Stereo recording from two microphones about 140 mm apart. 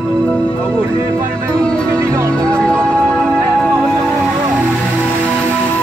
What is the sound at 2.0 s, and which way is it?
Music, 20° right (ahead or behind).